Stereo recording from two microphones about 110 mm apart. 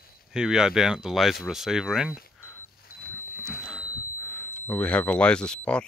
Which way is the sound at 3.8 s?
20° left (ahead or behind).